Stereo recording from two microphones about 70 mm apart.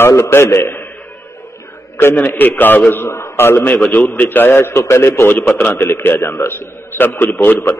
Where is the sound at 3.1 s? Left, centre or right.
Left.